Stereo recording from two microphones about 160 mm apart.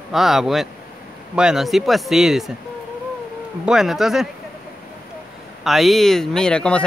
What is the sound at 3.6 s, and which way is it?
Speech, centre (ahead or behind).